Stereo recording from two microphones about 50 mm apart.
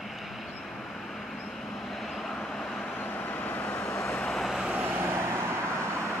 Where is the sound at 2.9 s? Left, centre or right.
Left.